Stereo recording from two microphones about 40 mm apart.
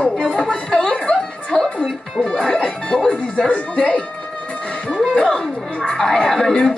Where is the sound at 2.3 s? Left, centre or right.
Left.